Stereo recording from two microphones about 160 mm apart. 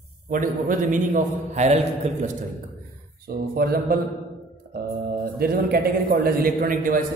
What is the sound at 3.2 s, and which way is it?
Speech, 70° right (ahead or behind).